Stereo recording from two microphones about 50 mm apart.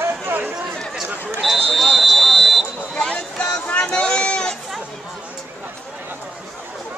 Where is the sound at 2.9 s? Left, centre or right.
Centre.